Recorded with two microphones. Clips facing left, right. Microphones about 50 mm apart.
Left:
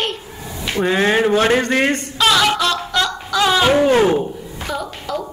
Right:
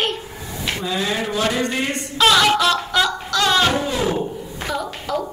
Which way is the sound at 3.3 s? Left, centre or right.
Centre.